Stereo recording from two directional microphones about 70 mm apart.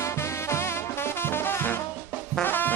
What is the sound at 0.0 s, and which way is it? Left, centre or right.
Music, left.